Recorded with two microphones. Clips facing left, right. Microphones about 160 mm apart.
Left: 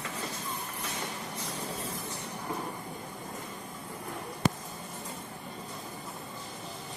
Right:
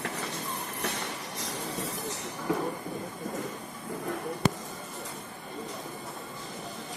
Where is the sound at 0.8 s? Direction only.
80° right.